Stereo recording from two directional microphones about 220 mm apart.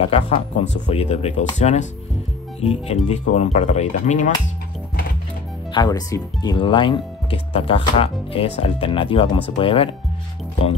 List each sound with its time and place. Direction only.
0.1 s speech: 30° left (ahead or behind)
5.7 s speech: 20° left (ahead or behind)